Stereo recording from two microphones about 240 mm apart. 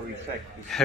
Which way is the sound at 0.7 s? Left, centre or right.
Centre.